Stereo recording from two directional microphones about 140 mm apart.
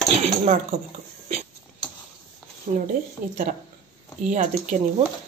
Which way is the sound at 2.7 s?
50° right (ahead or behind).